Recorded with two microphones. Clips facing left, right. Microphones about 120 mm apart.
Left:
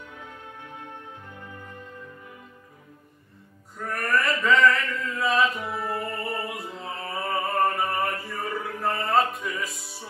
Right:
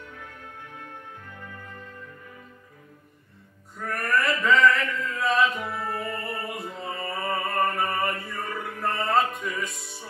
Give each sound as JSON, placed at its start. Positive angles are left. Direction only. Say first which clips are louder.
{"t": 3.7, "sound": "chant", "louder": "even", "side_deg": 0}
{"t": 8.3, "sound": "music", "louder": "left 2 dB", "side_deg": 0}